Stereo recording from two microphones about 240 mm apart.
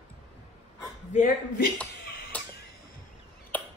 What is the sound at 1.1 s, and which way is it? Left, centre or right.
Speech, left.